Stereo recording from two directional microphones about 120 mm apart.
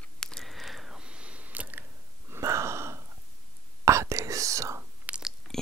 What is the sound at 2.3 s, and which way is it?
Wheeze, 25° right (ahead or behind).